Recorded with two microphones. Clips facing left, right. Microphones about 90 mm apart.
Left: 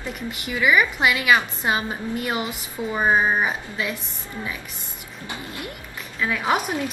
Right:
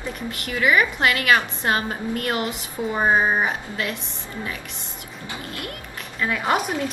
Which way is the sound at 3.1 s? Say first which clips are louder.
Even; 10° right (ahead or behind).